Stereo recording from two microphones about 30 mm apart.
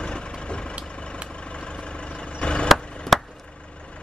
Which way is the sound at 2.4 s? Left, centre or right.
Left.